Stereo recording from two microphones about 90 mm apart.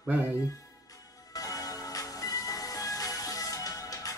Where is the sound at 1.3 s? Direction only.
40° left (ahead or behind).